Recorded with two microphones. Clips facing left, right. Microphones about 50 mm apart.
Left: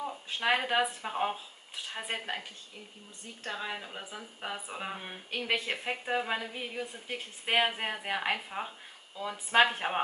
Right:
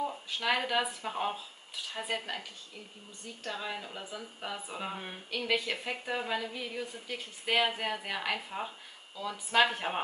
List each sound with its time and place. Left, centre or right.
0.3 s a woman's voice: left
3.4 s speech: centre
5.3 s a woman's voice: left